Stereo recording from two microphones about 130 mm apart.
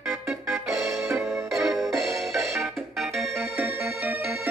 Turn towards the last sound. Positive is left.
turn(degrees=-15)  # may be behind; listen again after turning